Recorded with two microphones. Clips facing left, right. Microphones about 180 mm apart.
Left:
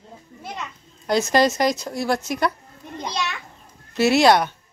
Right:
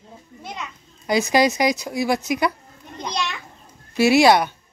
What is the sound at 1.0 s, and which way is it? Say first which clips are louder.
Speech: even; centre (ahead or behind).